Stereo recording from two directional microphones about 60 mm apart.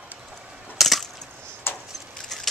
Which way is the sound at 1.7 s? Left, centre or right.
Left.